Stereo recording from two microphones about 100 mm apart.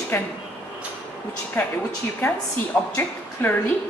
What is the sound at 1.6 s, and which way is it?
Speech, 20° left (ahead or behind).